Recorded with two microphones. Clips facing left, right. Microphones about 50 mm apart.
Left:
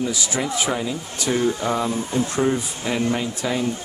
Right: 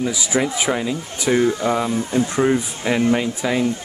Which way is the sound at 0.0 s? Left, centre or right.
Centre.